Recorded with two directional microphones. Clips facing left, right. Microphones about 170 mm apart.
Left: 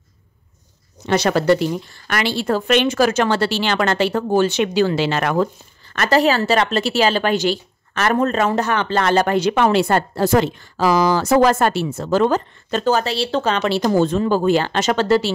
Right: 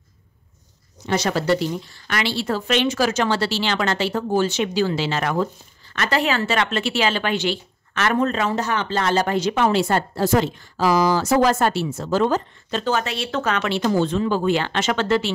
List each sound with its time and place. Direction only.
1.0 s a woman's voice: 65° left (ahead or behind)
5.9 s a woman's voice: 40° left (ahead or behind); by 12.8 s 60° left (ahead or behind)
12.8 s speech: 35° left (ahead or behind)